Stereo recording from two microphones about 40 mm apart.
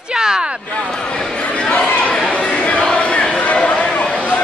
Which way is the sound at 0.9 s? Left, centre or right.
Left.